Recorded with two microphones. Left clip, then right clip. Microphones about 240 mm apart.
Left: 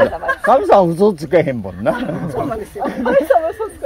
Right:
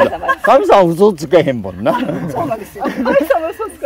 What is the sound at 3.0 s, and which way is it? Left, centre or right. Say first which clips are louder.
Speech: even; right.